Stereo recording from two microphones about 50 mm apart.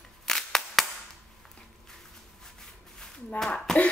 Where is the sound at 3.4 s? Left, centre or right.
Centre.